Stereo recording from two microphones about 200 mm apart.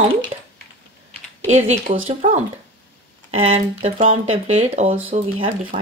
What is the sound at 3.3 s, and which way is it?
Speech, 30° right (ahead or behind).